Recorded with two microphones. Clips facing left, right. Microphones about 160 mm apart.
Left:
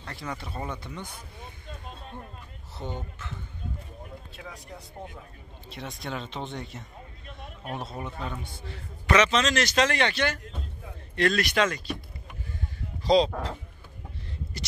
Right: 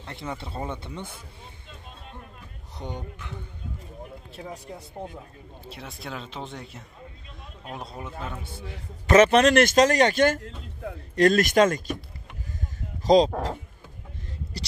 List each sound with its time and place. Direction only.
0.0 s speech: 25° right (ahead or behind)
2.8 s a man's voice: 15° right (ahead or behind)
4.4 s speech: 35° right (ahead or behind)
5.7 s speech: 5° right (ahead or behind)
9.1 s speech: 55° right (ahead or behind)
10.4 s music: 65° right (ahead or behind)
11.1 s speech: 45° right (ahead or behind)
13.0 s speech: 45° right (ahead or behind)